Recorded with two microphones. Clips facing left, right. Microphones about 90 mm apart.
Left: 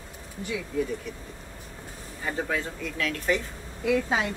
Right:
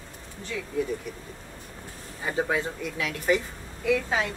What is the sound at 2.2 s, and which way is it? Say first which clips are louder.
Speech: right 3 dB; 15° right (ahead or behind).